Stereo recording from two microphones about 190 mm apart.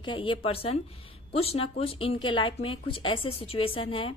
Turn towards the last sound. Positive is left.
turn(degrees=30)  # may be behind; listen again after turning